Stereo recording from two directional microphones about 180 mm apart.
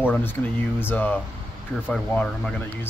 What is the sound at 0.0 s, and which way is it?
Speech, 10° left (ahead or behind).